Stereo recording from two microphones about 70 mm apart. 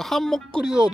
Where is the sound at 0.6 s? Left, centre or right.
Centre.